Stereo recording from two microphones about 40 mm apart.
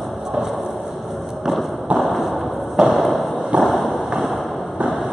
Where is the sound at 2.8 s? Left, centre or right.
Right.